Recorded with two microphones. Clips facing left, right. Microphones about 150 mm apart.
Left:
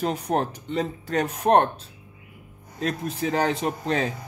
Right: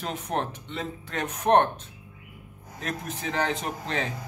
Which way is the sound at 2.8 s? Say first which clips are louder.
Left 7 dB; 35° left (ahead or behind).